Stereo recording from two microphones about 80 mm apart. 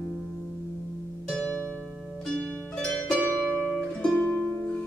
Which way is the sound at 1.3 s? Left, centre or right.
Centre.